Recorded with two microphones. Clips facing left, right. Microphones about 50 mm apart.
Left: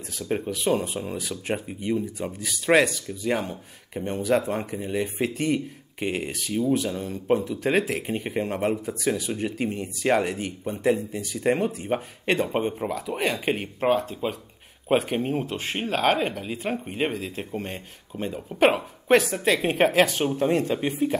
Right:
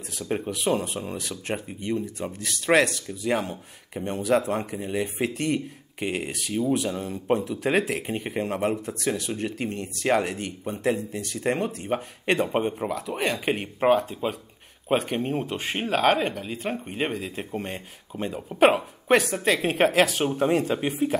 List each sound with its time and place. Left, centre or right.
0.2 s speech: centre